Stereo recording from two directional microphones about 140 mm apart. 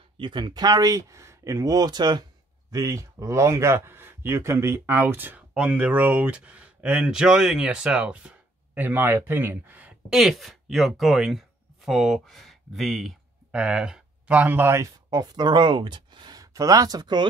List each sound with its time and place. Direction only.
0.2 s speech: 35° right (ahead or behind); by 14.9 s 15° right (ahead or behind)
15.0 s speech: 30° right (ahead or behind)